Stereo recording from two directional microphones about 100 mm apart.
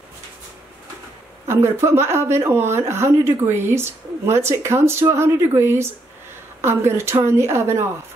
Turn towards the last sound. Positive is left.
turn(degrees=-25)  # may be behind; listen again after turning